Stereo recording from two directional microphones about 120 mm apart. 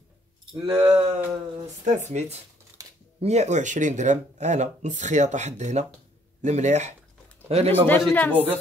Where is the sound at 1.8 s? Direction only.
75° right (ahead or behind).